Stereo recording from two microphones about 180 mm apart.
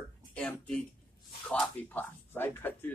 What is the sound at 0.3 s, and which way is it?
A man's voice, 5° left (ahead or behind).